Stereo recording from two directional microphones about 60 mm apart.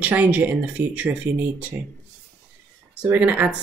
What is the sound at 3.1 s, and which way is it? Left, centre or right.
Speech, right.